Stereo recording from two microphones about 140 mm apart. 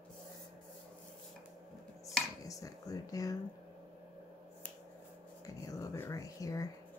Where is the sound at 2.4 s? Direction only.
25° left (ahead or behind).